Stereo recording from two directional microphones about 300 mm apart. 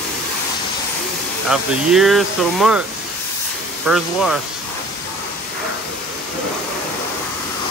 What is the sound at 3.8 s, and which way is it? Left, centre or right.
Speech, centre.